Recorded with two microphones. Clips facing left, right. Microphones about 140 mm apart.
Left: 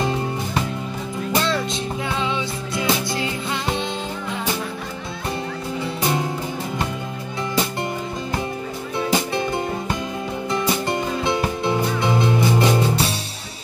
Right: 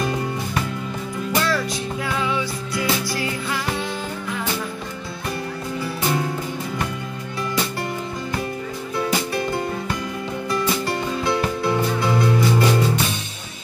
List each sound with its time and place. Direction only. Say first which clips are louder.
0.0 s music: left 1 dB; 25° left (ahead or behind)
8.9 s music: left 1 dB; 20° left (ahead or behind)